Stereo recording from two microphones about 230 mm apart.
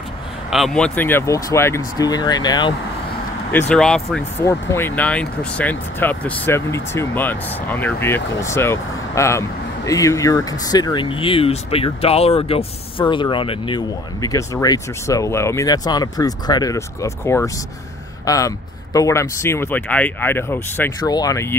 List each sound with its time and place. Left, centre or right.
0.5 s speech: centre
3.5 s speech: centre